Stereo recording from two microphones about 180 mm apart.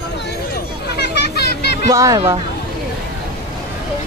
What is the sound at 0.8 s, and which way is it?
Children playing, 65° left (ahead or behind).